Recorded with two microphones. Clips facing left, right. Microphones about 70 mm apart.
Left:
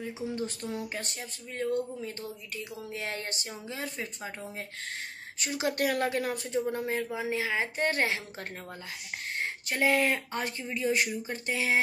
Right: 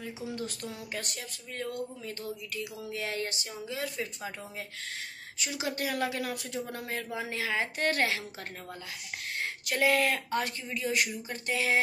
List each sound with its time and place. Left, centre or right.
0.4 s speech: left
5.4 s a woman's voice: left
6.7 s speech: left
9.4 s speech: left